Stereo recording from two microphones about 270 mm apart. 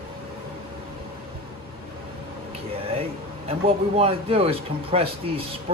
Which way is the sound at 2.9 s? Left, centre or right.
Right.